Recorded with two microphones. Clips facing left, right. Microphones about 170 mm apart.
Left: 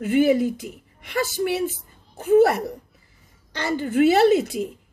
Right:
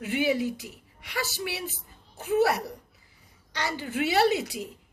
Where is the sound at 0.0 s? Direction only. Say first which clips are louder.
Left 8 dB; 50° left (ahead or behind).